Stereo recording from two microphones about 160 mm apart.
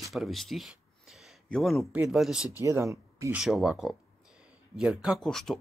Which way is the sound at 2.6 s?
20° right (ahead or behind).